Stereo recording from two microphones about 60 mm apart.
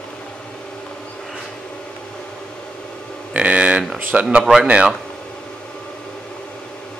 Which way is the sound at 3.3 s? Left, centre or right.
Right.